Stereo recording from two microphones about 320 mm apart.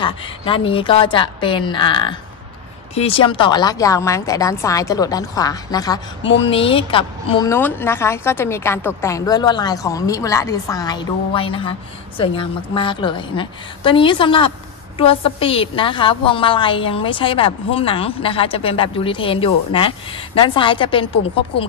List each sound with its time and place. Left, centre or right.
0.0 s a woman's voice: centre